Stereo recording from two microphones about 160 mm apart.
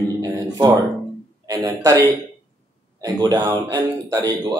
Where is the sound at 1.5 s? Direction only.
25° right (ahead or behind).